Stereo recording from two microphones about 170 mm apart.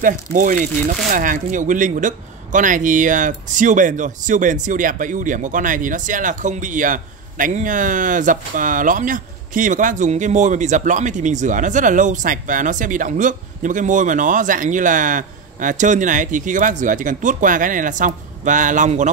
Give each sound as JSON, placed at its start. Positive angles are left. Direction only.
{"t": 0.0, "sound": "speech", "side_deg": -50}